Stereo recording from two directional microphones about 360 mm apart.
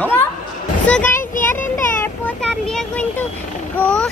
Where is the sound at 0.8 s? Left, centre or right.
Centre.